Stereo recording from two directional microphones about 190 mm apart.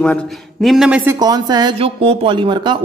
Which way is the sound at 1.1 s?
20° right (ahead or behind).